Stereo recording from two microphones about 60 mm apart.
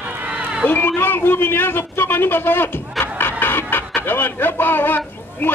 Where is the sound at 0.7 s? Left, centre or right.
Left.